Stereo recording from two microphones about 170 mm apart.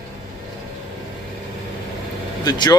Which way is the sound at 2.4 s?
25° left (ahead or behind).